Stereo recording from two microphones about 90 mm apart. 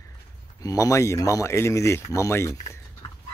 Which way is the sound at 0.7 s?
40° left (ahead or behind).